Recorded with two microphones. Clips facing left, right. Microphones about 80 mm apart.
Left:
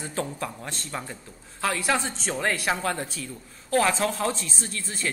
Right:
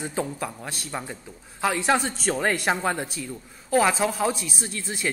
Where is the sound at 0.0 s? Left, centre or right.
Centre.